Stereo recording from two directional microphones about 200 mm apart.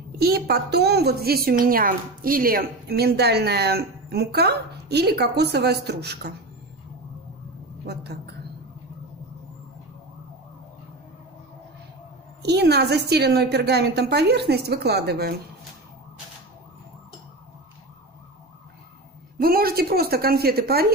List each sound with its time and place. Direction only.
0.2 s a woman's voice: 50° right (ahead or behind)
7.8 s a woman's voice: 55° right (ahead or behind)
12.4 s a woman's voice: 55° right (ahead or behind)
19.4 s a woman's voice: 50° right (ahead or behind)